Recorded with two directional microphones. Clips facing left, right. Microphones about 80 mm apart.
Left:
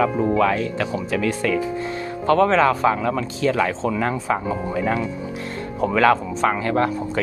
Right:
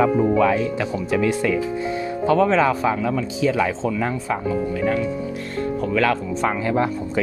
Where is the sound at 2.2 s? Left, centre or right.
Centre.